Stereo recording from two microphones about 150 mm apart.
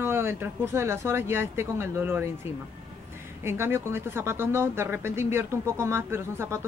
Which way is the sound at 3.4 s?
15° right (ahead or behind).